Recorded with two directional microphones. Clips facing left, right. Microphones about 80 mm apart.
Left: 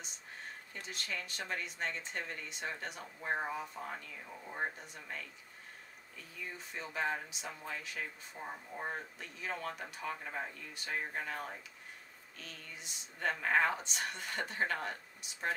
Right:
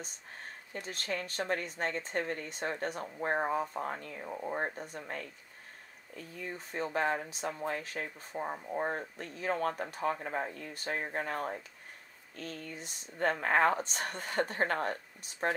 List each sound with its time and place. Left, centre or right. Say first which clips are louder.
0.7 s speech: right 6 dB; right